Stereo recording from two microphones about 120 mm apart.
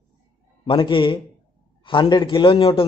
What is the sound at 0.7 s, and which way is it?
A man's voice, 45° left (ahead or behind).